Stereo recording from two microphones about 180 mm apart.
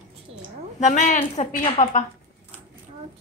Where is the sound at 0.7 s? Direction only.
40° left (ahead or behind).